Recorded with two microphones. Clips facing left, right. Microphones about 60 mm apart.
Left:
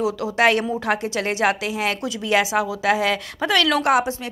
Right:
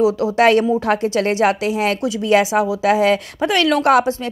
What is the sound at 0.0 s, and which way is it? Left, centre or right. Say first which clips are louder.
A woman's voice: right 5 dB; right.